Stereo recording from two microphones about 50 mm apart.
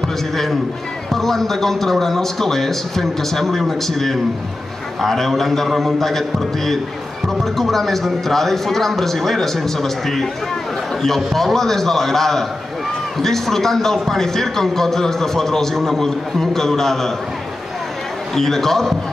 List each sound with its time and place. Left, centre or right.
1.1 s a man's voice: centre
18.3 s a man's voice: centre